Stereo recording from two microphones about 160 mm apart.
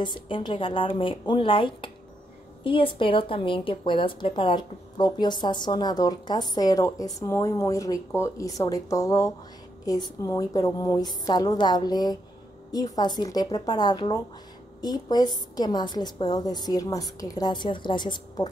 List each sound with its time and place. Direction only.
0.0 s a woman's voice: 30° left (ahead or behind)